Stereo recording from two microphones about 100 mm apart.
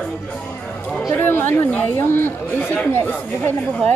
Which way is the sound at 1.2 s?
20° left (ahead or behind).